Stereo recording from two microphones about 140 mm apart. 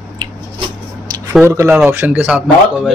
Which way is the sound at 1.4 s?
20° right (ahead or behind).